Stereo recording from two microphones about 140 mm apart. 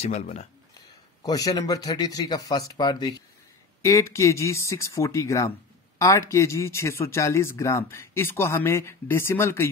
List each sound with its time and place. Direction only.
0.0 s speech: 50° left (ahead or behind)
1.2 s a man's voice: 25° left (ahead or behind)